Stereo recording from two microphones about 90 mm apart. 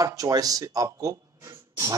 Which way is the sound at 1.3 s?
35° right (ahead or behind).